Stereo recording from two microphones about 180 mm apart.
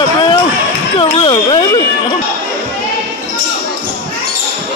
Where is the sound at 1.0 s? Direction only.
30° left (ahead or behind).